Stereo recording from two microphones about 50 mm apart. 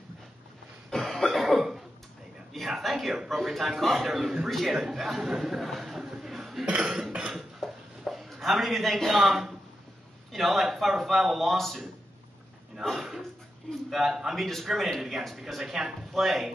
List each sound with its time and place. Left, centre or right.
0.8 s cough: centre
2.5 s a man's voice: centre
5.9 s a sound: centre
6.6 s cough: centre
7.3 s a sound: centre
10.3 s a man's voice: centre
12.9 s a man's voice: centre